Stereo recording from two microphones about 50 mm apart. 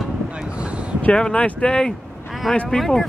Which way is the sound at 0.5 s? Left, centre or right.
Right.